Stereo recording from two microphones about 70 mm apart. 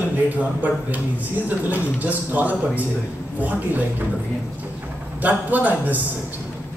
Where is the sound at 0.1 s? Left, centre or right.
Right.